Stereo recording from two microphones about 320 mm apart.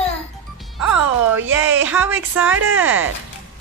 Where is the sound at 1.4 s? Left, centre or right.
Centre.